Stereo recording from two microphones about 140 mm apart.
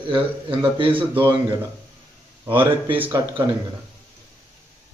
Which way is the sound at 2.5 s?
35° right (ahead or behind).